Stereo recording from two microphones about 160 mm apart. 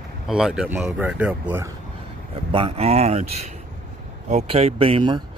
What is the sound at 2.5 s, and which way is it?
Speech, 35° right (ahead or behind).